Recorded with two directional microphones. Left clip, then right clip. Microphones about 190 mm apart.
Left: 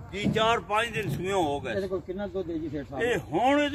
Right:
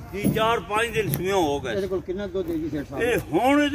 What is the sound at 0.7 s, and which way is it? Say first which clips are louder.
Speech: right 4 dB; 50° left (ahead or behind).